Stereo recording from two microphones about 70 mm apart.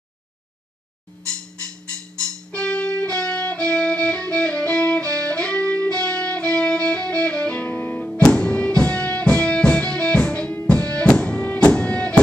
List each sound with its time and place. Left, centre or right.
2.1 s music: centre
8.1 s music: centre